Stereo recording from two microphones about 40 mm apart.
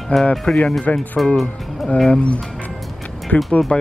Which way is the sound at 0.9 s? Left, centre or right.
Left.